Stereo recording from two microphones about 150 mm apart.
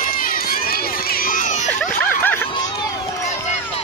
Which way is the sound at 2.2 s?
15° left (ahead or behind).